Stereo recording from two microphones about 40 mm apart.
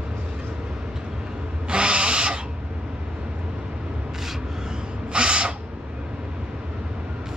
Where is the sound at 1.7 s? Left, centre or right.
Right.